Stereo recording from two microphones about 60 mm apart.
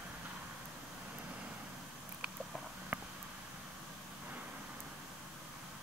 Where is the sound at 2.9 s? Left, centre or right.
Right.